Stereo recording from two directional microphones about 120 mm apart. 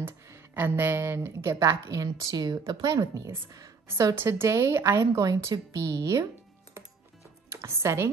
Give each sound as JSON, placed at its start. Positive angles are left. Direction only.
{"t": 0.0, "sound": "speech", "side_deg": -20}
{"t": 7.4, "sound": "speech", "side_deg": -25}